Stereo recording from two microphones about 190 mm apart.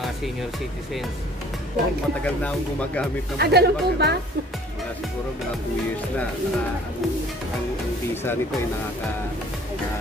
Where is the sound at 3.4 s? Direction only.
60° right (ahead or behind).